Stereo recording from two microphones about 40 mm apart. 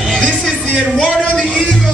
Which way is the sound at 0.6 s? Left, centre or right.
Left.